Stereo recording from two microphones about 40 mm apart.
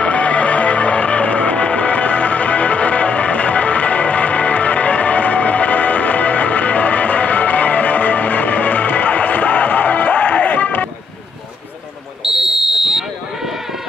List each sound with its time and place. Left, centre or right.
0.0 s music: left
12.2 s buzzer: centre